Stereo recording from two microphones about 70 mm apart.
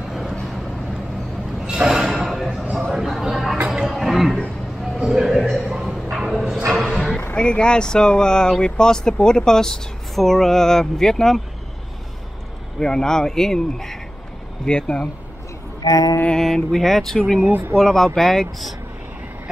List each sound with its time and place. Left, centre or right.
0.1 s vehicle: centre
1.7 s a sound: centre
7.3 s speech: centre
12.7 s speech: centre
15.8 s music: left
16.3 s speech: centre
17.5 s speech: right
17.7 s speech: centre